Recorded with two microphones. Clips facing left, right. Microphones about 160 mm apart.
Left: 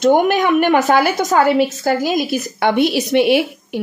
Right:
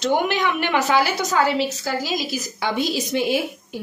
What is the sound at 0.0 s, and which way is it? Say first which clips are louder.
A woman's voice: left 7 dB; 50° left (ahead or behind).